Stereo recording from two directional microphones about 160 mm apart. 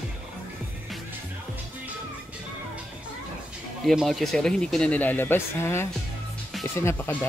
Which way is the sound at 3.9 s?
Centre (ahead or behind).